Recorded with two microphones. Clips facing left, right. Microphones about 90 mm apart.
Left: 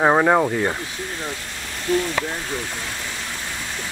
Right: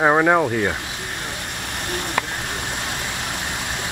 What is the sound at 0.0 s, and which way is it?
Speech, centre (ahead or behind).